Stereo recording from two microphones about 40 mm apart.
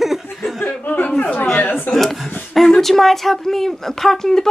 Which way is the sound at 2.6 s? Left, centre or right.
Centre.